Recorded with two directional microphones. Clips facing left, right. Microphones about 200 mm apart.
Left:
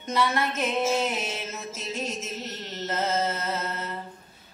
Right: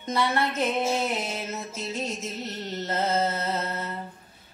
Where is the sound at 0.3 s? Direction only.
30° right (ahead or behind).